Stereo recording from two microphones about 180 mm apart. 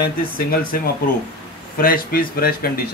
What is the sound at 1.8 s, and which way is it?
Speech, 55° left (ahead or behind).